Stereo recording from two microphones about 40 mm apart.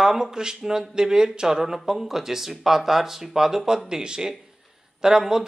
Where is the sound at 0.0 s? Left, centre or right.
Centre.